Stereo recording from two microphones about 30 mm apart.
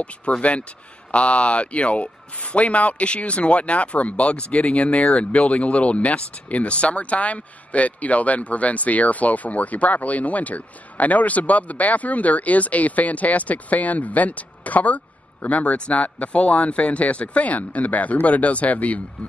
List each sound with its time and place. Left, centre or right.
0.0 s speech: left